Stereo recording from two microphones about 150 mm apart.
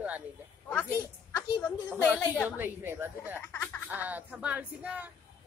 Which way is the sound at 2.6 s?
15° right (ahead or behind).